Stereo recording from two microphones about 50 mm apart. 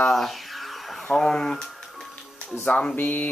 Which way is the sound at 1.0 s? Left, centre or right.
Centre.